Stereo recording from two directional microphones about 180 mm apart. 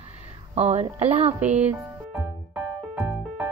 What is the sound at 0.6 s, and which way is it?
Speech, 40° right (ahead or behind).